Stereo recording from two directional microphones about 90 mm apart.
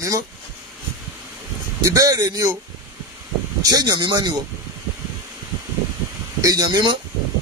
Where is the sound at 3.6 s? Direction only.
45° right (ahead or behind).